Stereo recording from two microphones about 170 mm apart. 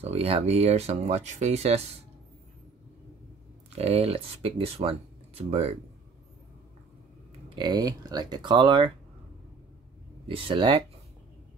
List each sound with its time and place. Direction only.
0.0 s speech: 35° right (ahead or behind)
3.7 s speech: 35° right (ahead or behind)
7.4 s speech: 25° right (ahead or behind)
10.2 s speech: 30° right (ahead or behind)